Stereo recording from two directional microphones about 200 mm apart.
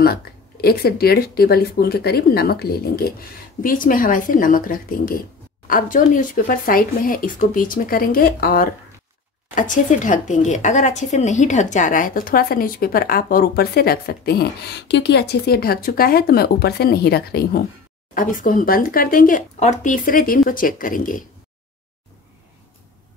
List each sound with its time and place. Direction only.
0.0 s speech: 50° left (ahead or behind)